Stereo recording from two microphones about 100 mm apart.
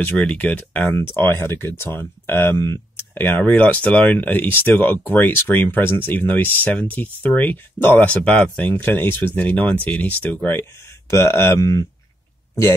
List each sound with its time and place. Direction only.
0.0 s speech: 15° left (ahead or behind)